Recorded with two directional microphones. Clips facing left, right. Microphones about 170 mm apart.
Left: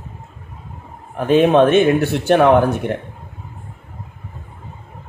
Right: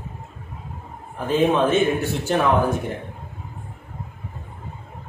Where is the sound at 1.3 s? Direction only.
70° left (ahead or behind).